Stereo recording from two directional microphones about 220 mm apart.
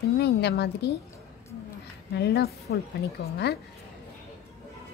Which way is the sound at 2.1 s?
50° left (ahead or behind).